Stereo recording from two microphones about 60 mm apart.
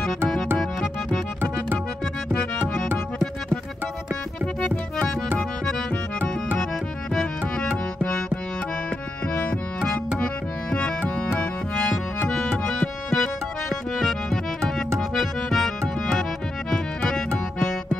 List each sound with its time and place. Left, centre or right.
0.6 s music: centre
7.2 s music: centre
9.3 s music: left
11.9 s accordion: centre
15.0 s music: centre